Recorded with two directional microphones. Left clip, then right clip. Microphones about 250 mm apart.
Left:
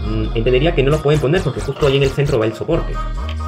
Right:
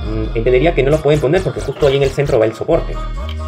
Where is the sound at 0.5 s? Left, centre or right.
Centre.